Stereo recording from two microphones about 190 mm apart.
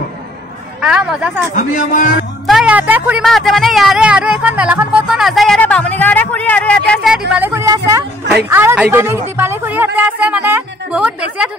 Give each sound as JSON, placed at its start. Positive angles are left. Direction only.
{"t": 0.7, "sound": "a man's voice", "side_deg": -5}
{"t": 1.5, "sound": "a man's voice", "side_deg": 45}
{"t": 2.4, "sound": "a man's voice", "side_deg": -5}